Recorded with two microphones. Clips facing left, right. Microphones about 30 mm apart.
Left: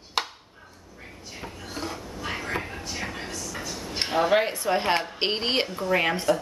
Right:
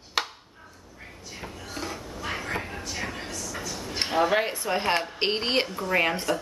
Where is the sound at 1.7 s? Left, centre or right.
Centre.